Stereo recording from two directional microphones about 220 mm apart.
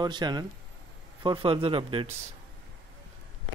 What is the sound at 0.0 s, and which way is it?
Speech, 20° right (ahead or behind).